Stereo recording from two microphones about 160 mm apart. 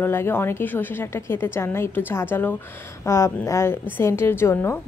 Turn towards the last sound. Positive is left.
turn(degrees=15)  # may be behind; listen again after turning